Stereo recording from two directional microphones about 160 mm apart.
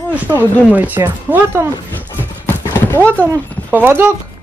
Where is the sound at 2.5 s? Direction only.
10° left (ahead or behind).